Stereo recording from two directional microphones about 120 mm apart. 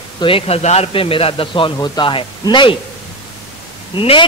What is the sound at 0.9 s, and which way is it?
Speech, 50° left (ahead or behind).